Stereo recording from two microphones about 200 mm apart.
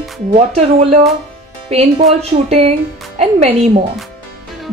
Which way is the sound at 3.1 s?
30° right (ahead or behind).